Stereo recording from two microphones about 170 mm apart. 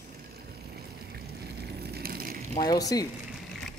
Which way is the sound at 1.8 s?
65° right (ahead or behind).